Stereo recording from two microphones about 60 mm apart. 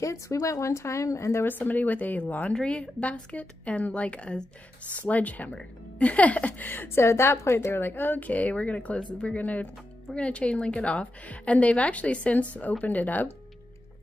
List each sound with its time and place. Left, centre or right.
0.0 s speech: left
1.4 s a woman's voice: left
7.1 s a woman's voice: left